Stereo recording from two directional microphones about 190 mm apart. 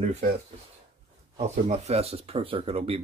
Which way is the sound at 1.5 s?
35° right (ahead or behind).